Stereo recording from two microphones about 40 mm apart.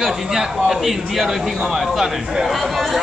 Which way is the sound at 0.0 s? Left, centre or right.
Centre.